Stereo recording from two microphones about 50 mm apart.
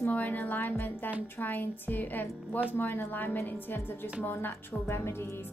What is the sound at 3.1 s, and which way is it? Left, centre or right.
Speech, left.